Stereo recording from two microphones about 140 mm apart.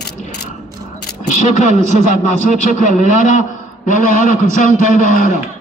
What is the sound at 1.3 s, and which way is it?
A man's voice, 60° left (ahead or behind).